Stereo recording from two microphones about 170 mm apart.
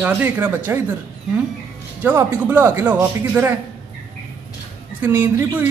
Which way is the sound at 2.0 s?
10° right (ahead or behind).